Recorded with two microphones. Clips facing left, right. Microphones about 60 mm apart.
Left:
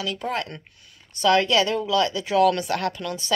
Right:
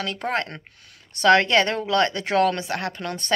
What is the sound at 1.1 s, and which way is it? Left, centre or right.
A woman's voice, right.